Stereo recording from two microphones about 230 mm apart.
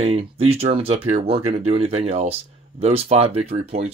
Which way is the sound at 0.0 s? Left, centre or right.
Right.